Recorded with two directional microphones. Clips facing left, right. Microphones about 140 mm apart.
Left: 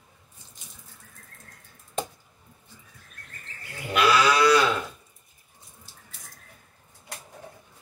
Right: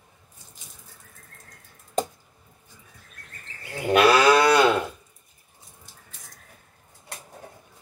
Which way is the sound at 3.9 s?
55° right (ahead or behind).